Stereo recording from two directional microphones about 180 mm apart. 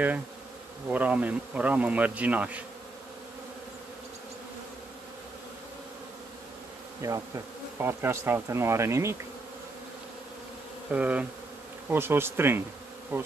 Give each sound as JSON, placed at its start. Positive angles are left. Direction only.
{"t": 0.8, "sound": "bee", "side_deg": -5}
{"t": 7.0, "sound": "bee", "side_deg": -15}
{"t": 10.9, "sound": "bee", "side_deg": -10}